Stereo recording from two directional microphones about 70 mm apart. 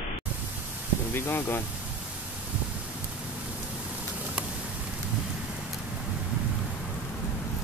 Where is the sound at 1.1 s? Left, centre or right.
Left.